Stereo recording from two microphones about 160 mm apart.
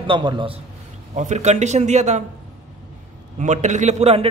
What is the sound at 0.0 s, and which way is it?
Speech, 30° right (ahead or behind).